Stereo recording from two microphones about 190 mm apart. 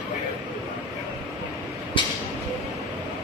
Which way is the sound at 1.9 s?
25° left (ahead or behind).